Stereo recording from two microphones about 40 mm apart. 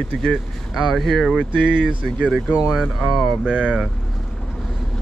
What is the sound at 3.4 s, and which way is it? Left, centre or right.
Speech, right.